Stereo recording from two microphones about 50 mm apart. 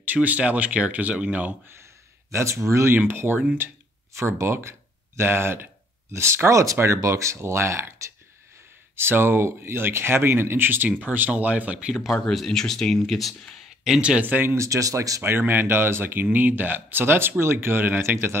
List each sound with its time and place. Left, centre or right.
0.0 s speech: right
2.3 s speech: right
3.0 s speech: right
4.4 s speech: right
8.9 s speech: right
11.9 s speech: centre
12.3 s speech: centre
14.2 s speech: right
14.6 s speech: right
15.2 s speech: right